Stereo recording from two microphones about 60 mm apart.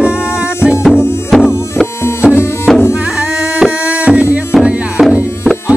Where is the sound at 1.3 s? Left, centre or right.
Centre.